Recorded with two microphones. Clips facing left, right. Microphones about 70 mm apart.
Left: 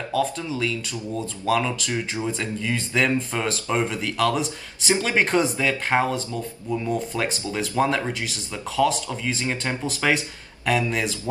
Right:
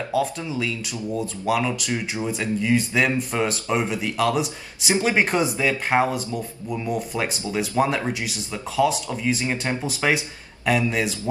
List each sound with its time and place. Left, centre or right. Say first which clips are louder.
0.1 s speech: even; centre
1.9 s speech: even; right